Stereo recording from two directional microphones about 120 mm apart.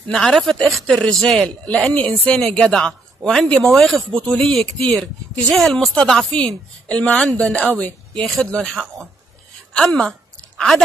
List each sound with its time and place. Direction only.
0.1 s speech: 5° left (ahead or behind)